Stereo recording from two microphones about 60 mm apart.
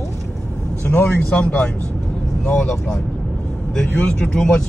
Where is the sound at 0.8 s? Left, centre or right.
Left.